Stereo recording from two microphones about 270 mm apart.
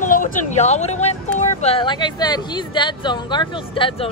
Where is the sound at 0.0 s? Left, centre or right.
Left.